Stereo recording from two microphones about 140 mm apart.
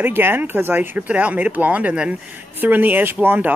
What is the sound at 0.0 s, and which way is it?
Speech, 15° right (ahead or behind).